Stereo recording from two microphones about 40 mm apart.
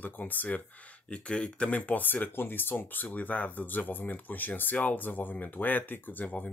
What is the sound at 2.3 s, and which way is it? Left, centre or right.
Speech, left.